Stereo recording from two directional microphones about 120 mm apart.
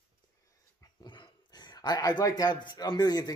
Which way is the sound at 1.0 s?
35° left (ahead or behind).